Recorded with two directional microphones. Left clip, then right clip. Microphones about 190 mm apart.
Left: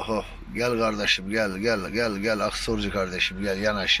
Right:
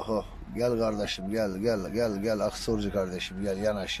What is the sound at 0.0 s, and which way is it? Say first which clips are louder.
Speech: left 3 dB; 25° right (ahead or behind).